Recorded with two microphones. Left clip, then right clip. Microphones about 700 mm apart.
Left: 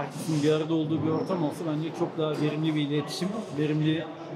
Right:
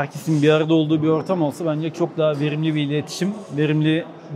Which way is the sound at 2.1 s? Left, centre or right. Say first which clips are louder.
Right 9 dB; right.